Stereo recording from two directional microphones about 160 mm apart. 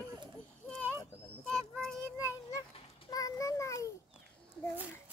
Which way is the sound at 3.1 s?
20° left (ahead or behind).